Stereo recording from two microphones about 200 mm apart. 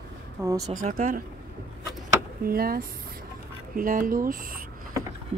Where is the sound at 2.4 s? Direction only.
50° right (ahead or behind).